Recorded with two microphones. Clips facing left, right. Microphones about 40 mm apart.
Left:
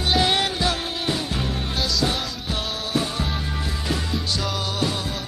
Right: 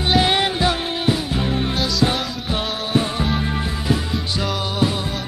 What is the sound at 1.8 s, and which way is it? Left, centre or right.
Music, centre.